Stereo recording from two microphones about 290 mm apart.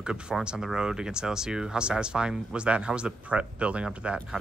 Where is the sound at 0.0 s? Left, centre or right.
Centre.